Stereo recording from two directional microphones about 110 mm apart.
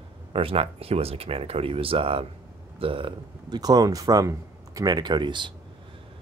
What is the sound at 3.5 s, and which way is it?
Speech, 35° right (ahead or behind).